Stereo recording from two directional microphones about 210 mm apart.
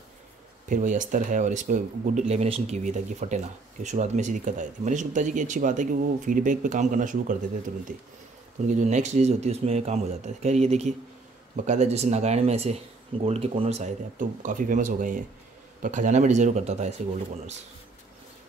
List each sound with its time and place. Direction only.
0.7 s speech: 35° right (ahead or behind)